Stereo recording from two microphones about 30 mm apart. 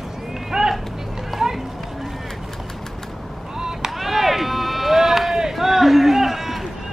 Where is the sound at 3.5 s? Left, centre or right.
Right.